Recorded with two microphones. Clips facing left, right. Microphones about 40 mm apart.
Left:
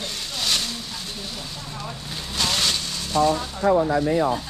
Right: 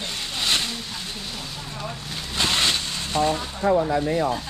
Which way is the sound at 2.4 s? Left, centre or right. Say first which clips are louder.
Right 1 dB; right.